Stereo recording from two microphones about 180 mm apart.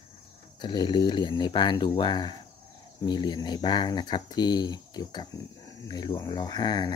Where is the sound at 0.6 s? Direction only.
25° left (ahead or behind).